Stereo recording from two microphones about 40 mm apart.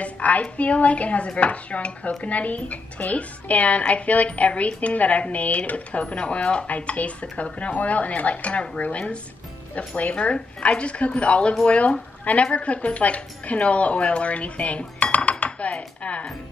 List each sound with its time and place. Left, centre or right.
0.0 s speech: left